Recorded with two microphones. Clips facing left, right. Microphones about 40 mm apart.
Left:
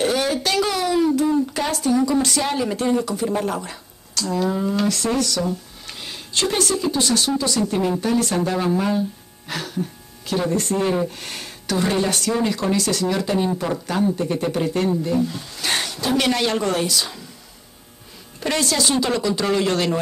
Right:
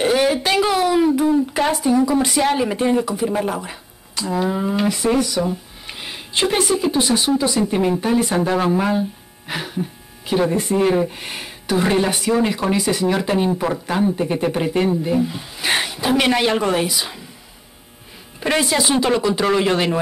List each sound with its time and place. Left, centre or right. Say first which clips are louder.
0.0 s speech: right 4 dB; right
18.4 s speech: right 3 dB; right